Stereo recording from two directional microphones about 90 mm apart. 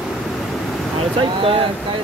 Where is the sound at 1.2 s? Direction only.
90° right.